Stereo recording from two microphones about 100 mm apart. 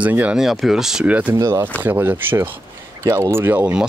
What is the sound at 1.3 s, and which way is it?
Speech, 30° right (ahead or behind).